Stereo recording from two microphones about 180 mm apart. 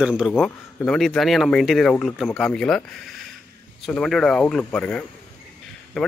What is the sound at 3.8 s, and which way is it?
A man's voice, centre (ahead or behind).